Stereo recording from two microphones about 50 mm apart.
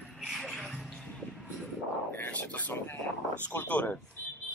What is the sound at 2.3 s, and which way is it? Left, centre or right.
Speech, left.